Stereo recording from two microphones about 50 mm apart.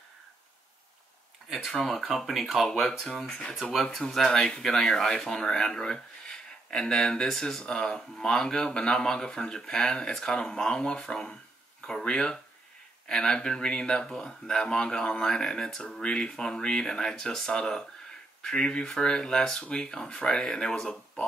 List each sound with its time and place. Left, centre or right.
1.9 s speech: centre
3.7 s speech: centre